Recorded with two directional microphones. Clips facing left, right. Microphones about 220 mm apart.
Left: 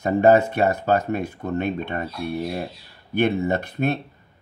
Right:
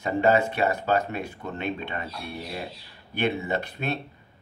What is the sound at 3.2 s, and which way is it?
Speech, 45° left (ahead or behind).